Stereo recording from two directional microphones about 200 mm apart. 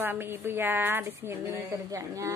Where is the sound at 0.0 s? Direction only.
10° right (ahead or behind).